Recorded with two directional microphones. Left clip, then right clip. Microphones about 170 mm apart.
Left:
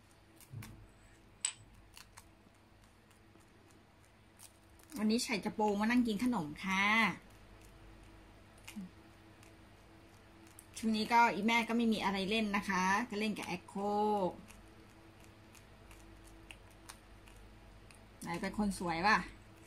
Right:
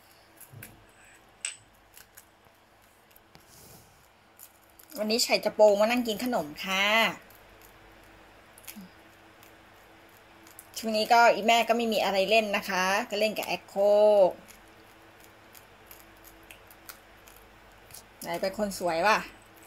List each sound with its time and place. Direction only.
4.9 s a woman's voice: 45° left (ahead or behind)
10.7 s a woman's voice: 45° left (ahead or behind)
18.2 s a woman's voice: 50° left (ahead or behind)